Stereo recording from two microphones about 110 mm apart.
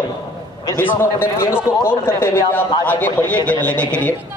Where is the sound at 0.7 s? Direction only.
20° left (ahead or behind).